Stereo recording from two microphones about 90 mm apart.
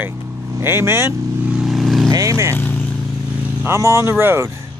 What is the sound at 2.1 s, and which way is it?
Vehicle, 35° right (ahead or behind).